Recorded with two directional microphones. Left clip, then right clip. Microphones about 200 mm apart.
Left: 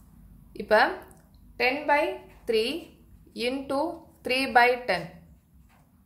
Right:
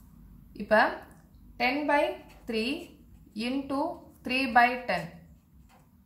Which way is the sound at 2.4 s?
55° left (ahead or behind).